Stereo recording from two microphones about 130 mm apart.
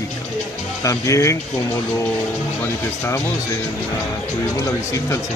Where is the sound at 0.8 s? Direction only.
25° left (ahead or behind).